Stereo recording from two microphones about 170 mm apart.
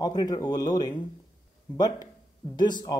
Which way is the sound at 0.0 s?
20° left (ahead or behind).